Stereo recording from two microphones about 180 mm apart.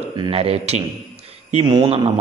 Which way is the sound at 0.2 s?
30° right (ahead or behind).